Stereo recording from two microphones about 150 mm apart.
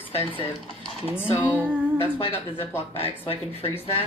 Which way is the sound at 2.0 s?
40° left (ahead or behind).